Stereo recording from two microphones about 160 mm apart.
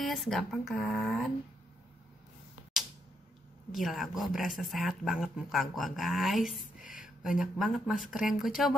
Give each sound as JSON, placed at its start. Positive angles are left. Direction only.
{"t": 0.0, "sound": "speech", "side_deg": 0}
{"t": 3.7, "sound": "speech", "side_deg": 0}
{"t": 6.8, "sound": "a sound", "side_deg": 55}
{"t": 7.2, "sound": "speech", "side_deg": 0}